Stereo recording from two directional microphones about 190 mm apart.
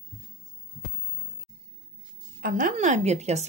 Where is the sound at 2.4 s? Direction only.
40° right (ahead or behind).